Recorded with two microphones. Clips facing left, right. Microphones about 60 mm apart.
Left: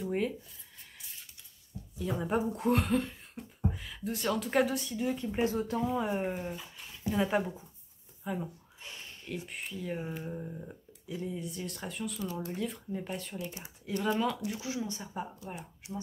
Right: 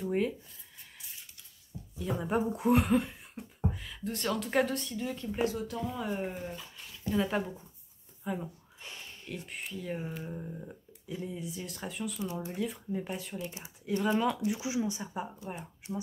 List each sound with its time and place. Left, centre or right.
0.0 s a sound: centre
2.0 s speech: centre
3.7 s speech: centre
5.4 s speech: left
5.9 s speech: centre